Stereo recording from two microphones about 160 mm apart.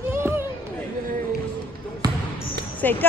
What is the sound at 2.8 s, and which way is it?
Speech, 10° left (ahead or behind).